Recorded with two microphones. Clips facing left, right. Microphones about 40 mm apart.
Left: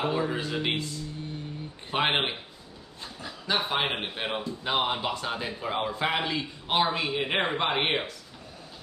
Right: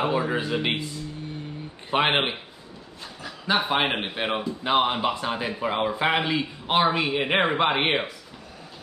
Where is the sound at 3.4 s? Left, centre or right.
Centre.